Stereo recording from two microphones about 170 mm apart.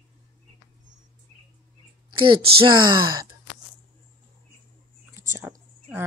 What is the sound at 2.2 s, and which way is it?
Speech, 30° right (ahead or behind).